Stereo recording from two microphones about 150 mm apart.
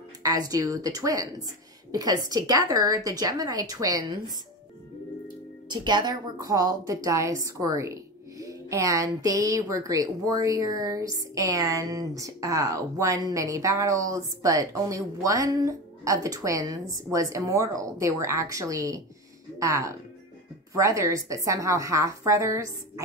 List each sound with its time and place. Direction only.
0.2 s a woman's voice: 25° right (ahead or behind)
5.7 s a woman's voice: 30° right (ahead or behind)